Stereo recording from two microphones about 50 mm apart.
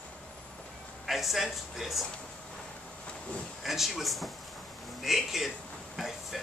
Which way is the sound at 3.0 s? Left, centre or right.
Centre.